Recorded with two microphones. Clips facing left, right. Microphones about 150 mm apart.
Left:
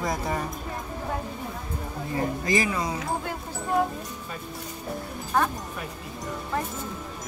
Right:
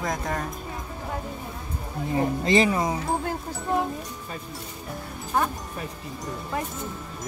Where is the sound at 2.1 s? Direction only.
25° right (ahead or behind).